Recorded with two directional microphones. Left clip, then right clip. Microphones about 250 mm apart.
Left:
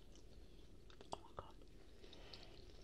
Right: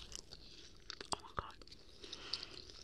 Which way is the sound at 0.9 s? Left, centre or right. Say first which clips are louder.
Right 9 dB; right.